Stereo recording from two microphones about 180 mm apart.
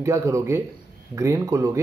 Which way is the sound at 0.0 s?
15° right (ahead or behind).